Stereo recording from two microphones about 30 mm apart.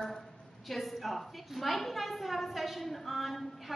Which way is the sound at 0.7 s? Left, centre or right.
Centre.